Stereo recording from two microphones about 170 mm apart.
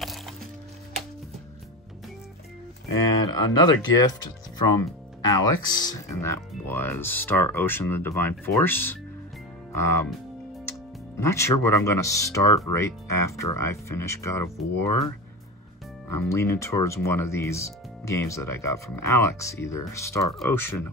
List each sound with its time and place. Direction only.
0.0 s music: centre (ahead or behind)
3.3 s speech: 25° left (ahead or behind)
11.1 s speech: 15° left (ahead or behind)